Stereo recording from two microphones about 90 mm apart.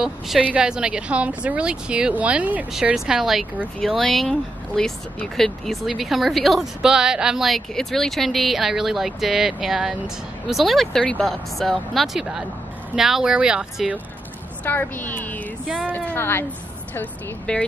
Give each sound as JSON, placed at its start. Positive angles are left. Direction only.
{"t": 0.4, "sound": "a woman's voice", "side_deg": -15}
{"t": 14.6, "sound": "a woman's voice", "side_deg": 20}
{"t": 16.9, "sound": "speech", "side_deg": 15}